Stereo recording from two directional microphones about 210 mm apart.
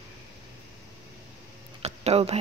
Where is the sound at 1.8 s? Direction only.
30° right (ahead or behind).